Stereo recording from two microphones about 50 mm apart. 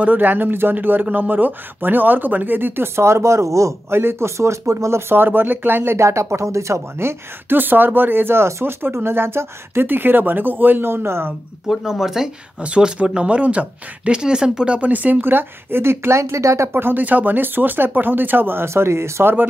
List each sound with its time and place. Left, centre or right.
0.0 s speech: right
3.9 s speech: right
5.1 s speech: right
5.9 s speech: right
7.5 s speech: right
8.5 s speech: right
10.9 s speech: right
11.6 s speech: centre
12.5 s speech: right
14.8 s speech: right
16.7 s speech: right
18.7 s speech: right